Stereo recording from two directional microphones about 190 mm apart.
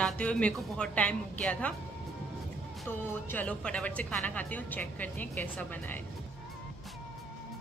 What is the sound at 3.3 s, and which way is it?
A woman's voice, 5° left (ahead or behind).